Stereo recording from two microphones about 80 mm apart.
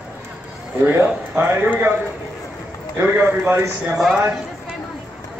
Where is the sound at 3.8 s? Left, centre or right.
Centre.